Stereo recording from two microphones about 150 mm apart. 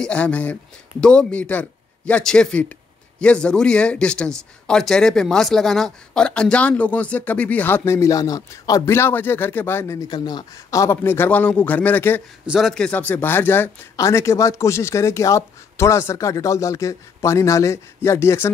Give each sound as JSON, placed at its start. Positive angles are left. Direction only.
{"t": 0.0, "sound": "speech", "side_deg": 10}
{"t": 12.4, "sound": "speech", "side_deg": 0}